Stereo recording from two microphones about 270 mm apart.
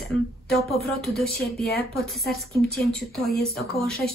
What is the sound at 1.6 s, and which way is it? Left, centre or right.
Speech, left.